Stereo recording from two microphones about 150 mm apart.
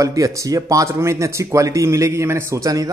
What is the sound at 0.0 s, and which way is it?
Speech, 20° right (ahead or behind).